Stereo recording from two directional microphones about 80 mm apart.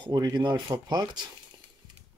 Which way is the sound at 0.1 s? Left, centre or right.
Right.